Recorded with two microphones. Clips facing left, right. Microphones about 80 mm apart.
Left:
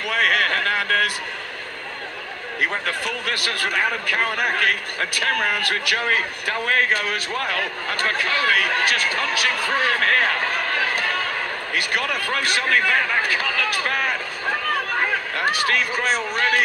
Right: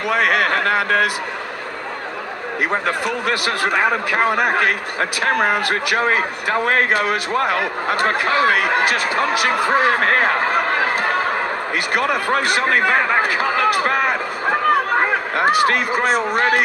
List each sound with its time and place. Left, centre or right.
0.1 s speech: right
0.7 s speech: right
2.9 s speech: right
3.4 s speech: right
13.2 s a sound: right
16.0 s speech: right
16.3 s speech: right